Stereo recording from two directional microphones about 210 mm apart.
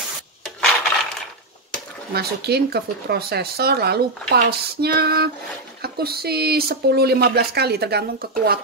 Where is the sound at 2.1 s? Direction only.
50° right (ahead or behind).